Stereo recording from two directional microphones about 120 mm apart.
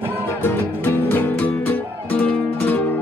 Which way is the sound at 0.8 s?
15° left (ahead or behind).